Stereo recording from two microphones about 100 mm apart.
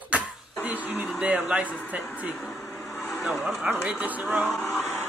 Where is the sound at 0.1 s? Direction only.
15° right (ahead or behind).